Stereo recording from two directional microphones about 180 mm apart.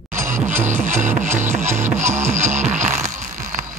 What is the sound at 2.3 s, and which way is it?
Music, 40° right (ahead or behind).